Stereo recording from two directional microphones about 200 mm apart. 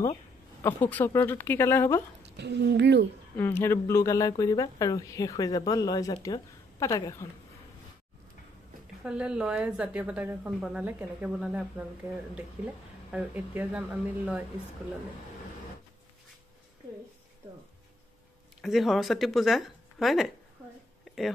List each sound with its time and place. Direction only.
0.6 s speech: 10° left (ahead or behind)
2.2 s speech: 60° right (ahead or behind)
3.3 s speech: 10° left (ahead or behind)
9.0 s a woman's voice: 5° right (ahead or behind)
13.1 s speech: 10° right (ahead or behind)
18.6 s speech: centre (ahead or behind)
21.0 s a sound: centre (ahead or behind)